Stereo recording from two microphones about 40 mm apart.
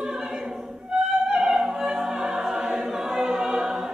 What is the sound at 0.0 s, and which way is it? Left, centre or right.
Opera, centre.